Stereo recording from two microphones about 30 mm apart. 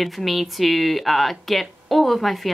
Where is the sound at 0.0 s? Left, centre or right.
Centre.